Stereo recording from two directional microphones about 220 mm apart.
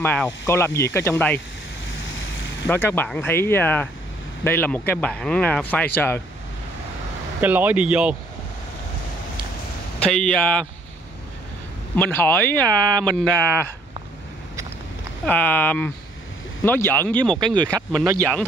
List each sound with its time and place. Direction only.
0.0 s speech: 10° left (ahead or behind)
2.7 s speech: 10° left (ahead or behind)
7.3 s speech: 10° right (ahead or behind)
10.1 s speech: 5° left (ahead or behind)
11.9 s speech: 10° left (ahead or behind)
15.2 s speech: 10° left (ahead or behind)
17.4 s speech: 20° right (ahead or behind)